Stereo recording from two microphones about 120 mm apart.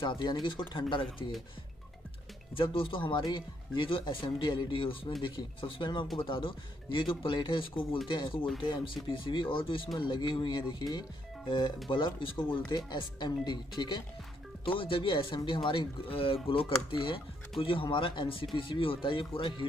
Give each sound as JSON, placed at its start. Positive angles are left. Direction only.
{"t": 0.0, "sound": "speech", "side_deg": 40}
{"t": 2.5, "sound": "speech", "side_deg": 45}